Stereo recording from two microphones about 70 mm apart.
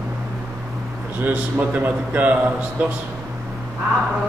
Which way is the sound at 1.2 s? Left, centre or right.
Right.